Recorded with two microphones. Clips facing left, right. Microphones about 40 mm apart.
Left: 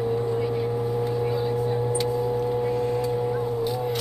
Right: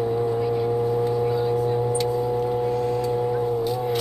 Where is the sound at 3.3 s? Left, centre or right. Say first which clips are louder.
Right 2 dB; centre.